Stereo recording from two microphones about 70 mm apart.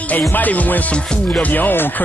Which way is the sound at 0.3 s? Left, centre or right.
Left.